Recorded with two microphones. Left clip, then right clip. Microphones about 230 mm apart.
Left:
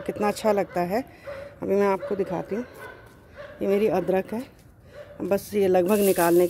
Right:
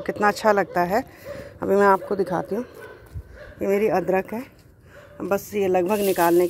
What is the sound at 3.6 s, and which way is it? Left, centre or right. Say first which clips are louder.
Speech: right 2 dB; centre.